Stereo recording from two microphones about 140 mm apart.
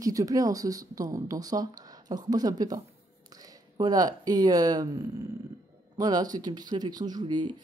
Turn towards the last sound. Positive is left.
turn(degrees=-30)  # may be behind; listen again after turning